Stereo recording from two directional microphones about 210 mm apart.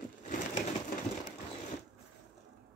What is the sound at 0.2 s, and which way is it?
Crushing, 40° left (ahead or behind).